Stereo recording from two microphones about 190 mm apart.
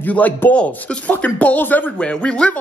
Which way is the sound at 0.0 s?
10° left (ahead or behind).